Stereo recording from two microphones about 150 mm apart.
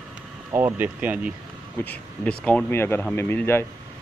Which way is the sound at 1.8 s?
10° left (ahead or behind).